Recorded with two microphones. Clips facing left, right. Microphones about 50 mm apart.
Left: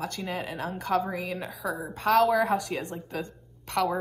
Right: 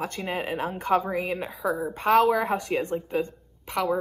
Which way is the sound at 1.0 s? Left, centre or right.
Right.